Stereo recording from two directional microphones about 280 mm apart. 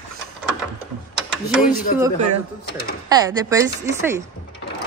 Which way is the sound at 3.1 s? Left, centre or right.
Centre.